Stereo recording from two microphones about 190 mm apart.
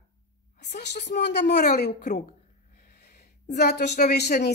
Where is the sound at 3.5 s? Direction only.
60° left (ahead or behind).